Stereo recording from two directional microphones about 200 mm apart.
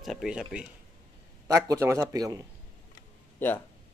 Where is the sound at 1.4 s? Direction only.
15° right (ahead or behind).